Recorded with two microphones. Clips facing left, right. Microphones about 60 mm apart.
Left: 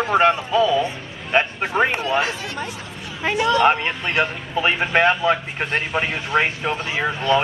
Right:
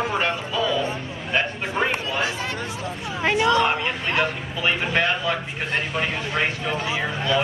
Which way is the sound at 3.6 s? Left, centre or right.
Left.